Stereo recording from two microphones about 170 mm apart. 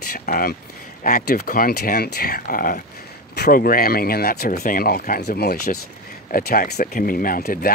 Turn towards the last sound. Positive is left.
turn(degrees=60)  # may be behind; listen again after turning